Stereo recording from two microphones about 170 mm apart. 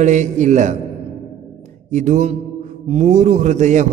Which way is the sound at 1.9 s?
45° right (ahead or behind).